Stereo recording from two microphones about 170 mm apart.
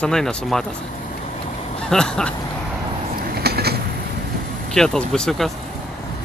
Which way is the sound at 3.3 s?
70° right (ahead or behind).